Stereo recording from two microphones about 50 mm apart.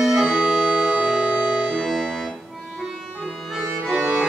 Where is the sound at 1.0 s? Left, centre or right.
Centre.